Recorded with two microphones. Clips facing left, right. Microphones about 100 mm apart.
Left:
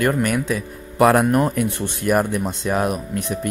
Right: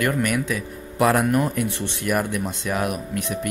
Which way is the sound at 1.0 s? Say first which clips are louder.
Left 4 dB; 50° left (ahead or behind).